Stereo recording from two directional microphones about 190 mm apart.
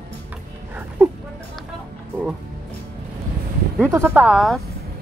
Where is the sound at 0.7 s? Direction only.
10° right (ahead or behind).